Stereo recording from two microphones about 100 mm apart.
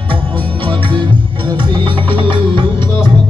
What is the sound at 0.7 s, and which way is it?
Music, 60° right (ahead or behind).